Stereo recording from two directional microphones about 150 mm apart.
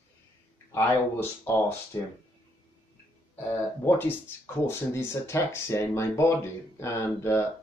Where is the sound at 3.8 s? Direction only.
15° left (ahead or behind).